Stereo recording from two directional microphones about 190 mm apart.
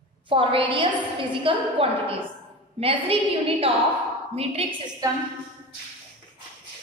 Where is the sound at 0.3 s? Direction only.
25° right (ahead or behind).